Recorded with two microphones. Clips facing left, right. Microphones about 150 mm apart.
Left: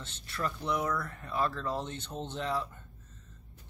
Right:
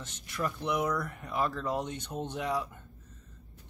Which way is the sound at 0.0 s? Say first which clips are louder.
Right 1 dB; 10° right (ahead or behind).